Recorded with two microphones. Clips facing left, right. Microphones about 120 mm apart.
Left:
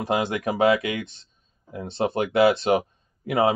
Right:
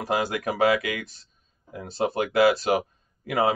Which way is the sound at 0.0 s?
25° left (ahead or behind).